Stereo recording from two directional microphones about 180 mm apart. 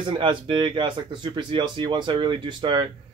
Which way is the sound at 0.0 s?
30° right (ahead or behind).